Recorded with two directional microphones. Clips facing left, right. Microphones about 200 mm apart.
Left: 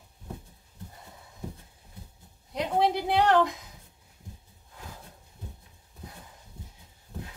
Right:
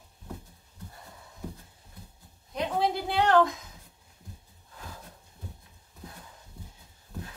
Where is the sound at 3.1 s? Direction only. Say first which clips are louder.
Right 1 dB; 15° left (ahead or behind).